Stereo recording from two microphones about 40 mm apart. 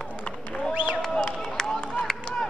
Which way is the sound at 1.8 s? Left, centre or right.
Left.